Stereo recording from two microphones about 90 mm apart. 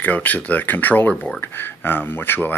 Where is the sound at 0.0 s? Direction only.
20° left (ahead or behind).